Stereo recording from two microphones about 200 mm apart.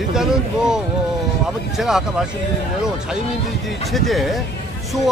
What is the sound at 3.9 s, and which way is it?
Speech, centre (ahead or behind).